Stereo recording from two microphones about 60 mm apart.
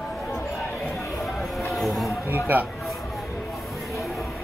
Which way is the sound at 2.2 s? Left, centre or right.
Right.